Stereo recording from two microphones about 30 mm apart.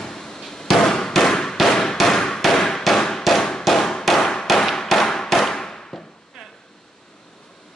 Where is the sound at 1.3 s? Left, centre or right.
Centre.